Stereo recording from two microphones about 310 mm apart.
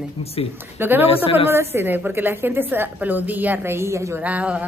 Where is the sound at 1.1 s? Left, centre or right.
Centre.